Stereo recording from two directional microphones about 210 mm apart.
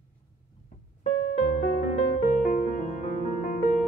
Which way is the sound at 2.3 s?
40° left (ahead or behind).